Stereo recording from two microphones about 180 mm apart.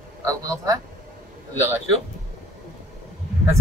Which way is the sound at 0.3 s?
20° right (ahead or behind).